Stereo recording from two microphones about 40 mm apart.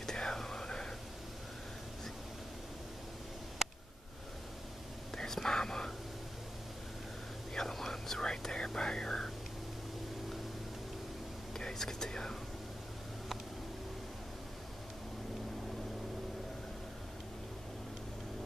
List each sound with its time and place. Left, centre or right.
0.0 s whispering: centre
5.1 s whispering: centre
7.5 s whispering: centre
11.5 s whispering: centre